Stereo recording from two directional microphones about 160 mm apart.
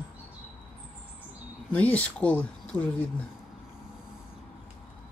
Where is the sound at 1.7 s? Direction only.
10° left (ahead or behind).